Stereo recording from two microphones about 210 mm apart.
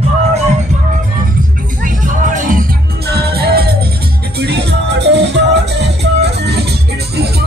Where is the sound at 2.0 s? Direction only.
40° right (ahead or behind); by 5.9 s 55° right (ahead or behind).